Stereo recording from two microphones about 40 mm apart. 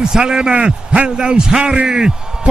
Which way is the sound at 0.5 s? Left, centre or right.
Right.